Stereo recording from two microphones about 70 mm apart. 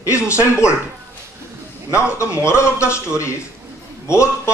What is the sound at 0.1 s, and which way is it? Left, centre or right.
Speech, left.